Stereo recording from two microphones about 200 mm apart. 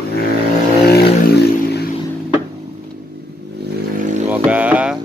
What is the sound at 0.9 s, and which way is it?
Vehicle, 55° left (ahead or behind).